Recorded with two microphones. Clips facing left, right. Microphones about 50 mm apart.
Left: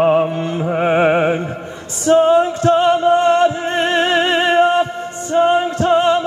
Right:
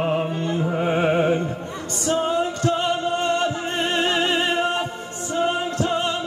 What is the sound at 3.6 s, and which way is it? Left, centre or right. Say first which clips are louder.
Music: left 6 dB; left.